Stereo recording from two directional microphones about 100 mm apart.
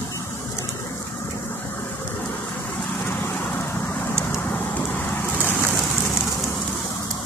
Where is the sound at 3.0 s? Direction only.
20° left (ahead or behind).